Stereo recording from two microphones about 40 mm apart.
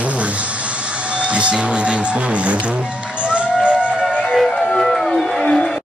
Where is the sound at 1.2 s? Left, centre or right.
Right.